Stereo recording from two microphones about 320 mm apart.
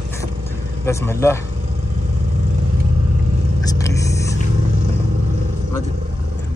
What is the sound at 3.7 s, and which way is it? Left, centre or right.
Vehicle, centre.